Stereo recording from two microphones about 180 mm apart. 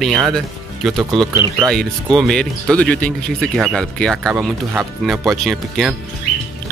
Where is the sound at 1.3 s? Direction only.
15° right (ahead or behind).